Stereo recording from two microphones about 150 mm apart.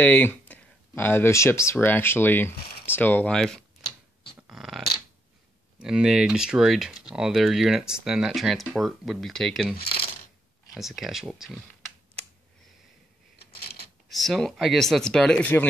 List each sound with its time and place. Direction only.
0.0 s speech: 10° left (ahead or behind)
4.4 s a sound: 5° right (ahead or behind)
5.8 s speech: 5° right (ahead or behind)
9.8 s coin: 35° left (ahead or behind)
10.7 s speech: centre (ahead or behind)
14.0 s speech: centre (ahead or behind)